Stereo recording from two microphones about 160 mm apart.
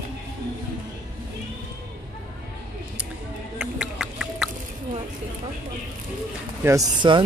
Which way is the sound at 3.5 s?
5° right (ahead or behind).